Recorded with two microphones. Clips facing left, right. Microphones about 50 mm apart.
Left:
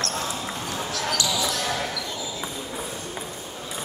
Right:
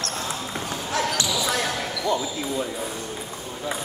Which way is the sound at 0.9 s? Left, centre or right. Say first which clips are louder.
Right 3 dB; right.